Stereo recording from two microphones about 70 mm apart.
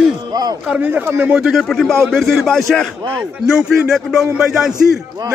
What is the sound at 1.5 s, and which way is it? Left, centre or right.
A man's voice, centre.